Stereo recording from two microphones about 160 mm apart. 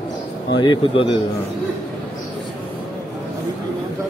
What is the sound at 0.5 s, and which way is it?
Speech, 30° left (ahead or behind).